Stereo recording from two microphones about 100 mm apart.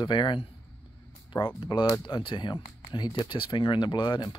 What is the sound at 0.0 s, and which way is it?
Speech, 50° left (ahead or behind).